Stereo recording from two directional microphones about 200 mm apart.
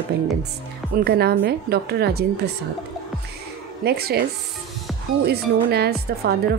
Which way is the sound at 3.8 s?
50° right (ahead or behind).